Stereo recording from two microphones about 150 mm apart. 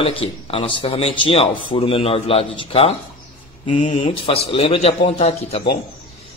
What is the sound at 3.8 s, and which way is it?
Speech, 50° left (ahead or behind).